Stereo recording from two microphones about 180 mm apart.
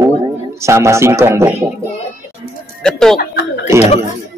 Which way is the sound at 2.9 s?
5° left (ahead or behind).